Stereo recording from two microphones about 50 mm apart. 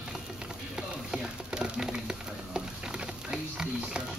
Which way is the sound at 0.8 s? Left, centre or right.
Centre.